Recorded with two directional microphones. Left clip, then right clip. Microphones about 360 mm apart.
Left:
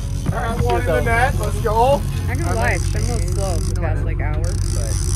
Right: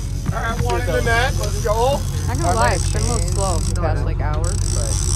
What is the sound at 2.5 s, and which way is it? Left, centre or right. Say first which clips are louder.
Speech: even; centre.